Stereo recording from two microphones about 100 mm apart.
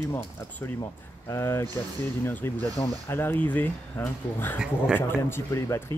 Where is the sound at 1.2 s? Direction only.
25° left (ahead or behind).